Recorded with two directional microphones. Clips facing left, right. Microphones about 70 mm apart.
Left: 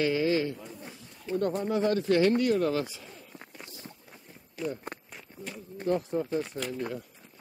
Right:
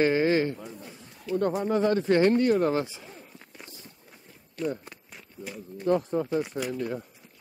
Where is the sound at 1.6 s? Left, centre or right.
Right.